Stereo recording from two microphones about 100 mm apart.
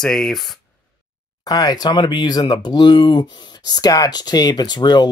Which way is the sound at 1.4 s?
40° left (ahead or behind).